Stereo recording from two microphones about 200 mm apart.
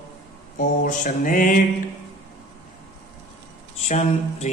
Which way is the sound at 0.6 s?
40° left (ahead or behind).